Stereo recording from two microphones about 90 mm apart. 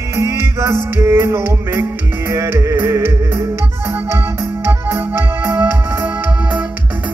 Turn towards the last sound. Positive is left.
turn(degrees=-20)  # may be behind; listen again after turning